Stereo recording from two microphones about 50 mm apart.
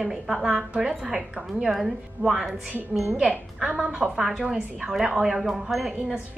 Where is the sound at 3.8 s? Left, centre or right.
Centre.